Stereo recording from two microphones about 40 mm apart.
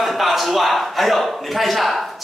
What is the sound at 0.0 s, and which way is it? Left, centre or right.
A man's voice, centre.